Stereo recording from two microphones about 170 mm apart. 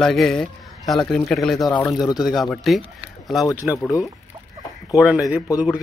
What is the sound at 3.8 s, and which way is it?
Speech, 20° left (ahead or behind).